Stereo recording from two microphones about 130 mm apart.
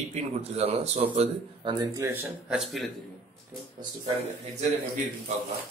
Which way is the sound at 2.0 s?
20° right (ahead or behind).